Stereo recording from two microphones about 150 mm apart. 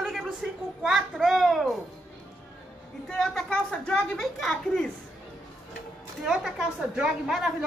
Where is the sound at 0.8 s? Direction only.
Centre (ahead or behind).